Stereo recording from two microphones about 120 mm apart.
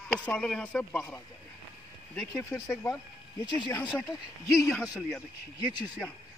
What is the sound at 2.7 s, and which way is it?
Speech, 10° left (ahead or behind).